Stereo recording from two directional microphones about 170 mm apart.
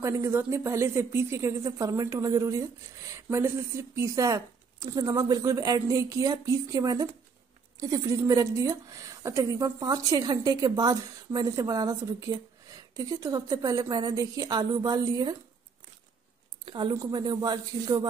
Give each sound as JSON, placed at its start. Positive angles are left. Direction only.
{"t": 0.0, "sound": "a woman's voice", "side_deg": -15}
{"t": 16.6, "sound": "a woman's voice", "side_deg": -25}